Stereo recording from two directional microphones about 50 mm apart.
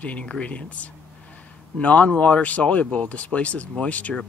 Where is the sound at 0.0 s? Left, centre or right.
Left.